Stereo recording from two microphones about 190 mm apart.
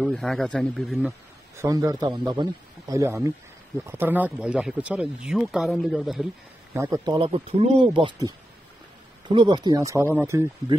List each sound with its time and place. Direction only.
0.0 s speech: 5° left (ahead or behind)
1.6 s a man's voice: 20° right (ahead or behind); by 6.2 s centre (ahead or behind)
6.7 s speech: 15° right (ahead or behind)
7.2 s a man's voice: 30° right (ahead or behind)